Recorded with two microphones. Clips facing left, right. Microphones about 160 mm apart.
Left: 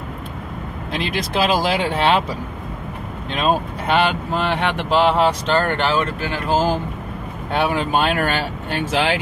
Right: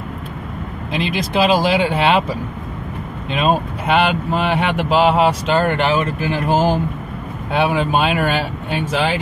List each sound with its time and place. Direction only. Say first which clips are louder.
0.9 s speech: right 3 dB; centre (ahead or behind)
7.5 s speech: right 2 dB; centre (ahead or behind)